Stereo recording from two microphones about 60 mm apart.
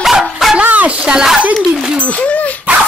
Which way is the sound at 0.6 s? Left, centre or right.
Right.